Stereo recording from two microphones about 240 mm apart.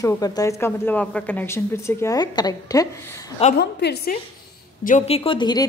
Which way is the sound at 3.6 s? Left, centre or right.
Left.